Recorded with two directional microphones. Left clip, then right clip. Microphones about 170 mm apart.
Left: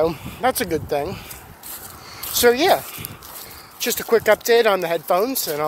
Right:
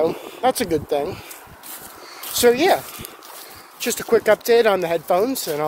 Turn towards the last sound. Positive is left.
turn(degrees=-15)  # may be behind; listen again after turning